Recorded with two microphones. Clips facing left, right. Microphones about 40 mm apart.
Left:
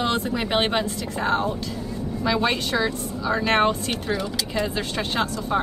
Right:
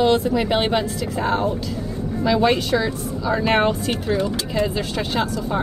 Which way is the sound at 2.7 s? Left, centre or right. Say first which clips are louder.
Right 3 dB; centre.